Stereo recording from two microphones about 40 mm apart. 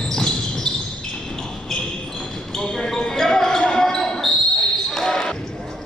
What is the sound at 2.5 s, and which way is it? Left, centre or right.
Basketball bounce, centre.